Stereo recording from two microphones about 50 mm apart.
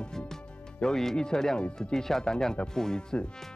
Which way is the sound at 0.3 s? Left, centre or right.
Centre.